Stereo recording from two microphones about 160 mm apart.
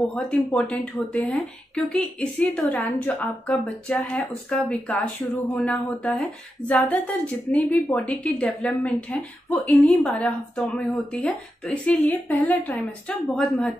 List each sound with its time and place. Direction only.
0.1 s a woman's voice: 5° left (ahead or behind)